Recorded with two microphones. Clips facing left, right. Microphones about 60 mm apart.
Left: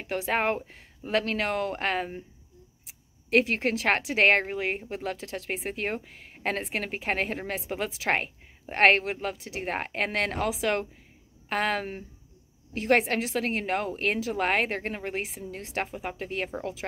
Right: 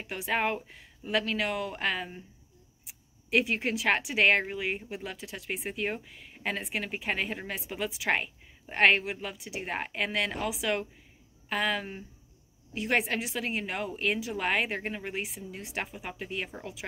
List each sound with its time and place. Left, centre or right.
0.2 s speech: left
3.3 s speech: left